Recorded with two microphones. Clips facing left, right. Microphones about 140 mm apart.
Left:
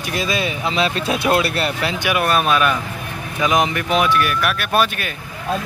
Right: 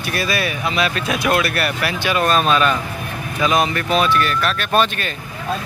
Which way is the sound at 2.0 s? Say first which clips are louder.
Right 1 dB; 10° left (ahead or behind).